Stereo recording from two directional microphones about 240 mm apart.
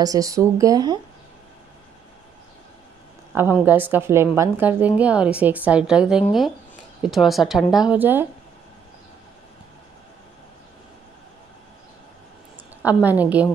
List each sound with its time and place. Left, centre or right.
0.0 s a woman's voice: centre
3.3 s a woman's voice: centre
12.8 s a woman's voice: centre